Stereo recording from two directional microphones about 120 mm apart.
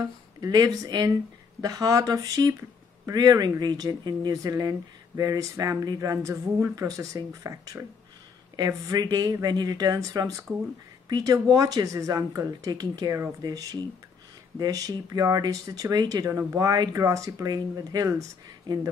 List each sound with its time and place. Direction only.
0.0 s speech: 30° right (ahead or behind)